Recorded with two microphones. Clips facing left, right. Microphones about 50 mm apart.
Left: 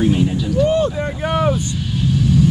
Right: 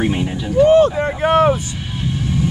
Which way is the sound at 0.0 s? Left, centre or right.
Right.